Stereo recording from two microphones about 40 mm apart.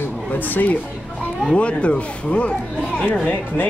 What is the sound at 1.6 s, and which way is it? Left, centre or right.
Speech, left.